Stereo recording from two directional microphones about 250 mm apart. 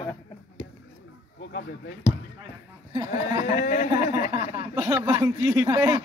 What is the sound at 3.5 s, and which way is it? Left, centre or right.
Speech, left.